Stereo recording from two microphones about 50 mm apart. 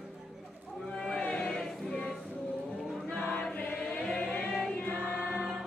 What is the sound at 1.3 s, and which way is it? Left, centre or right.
Choir, centre.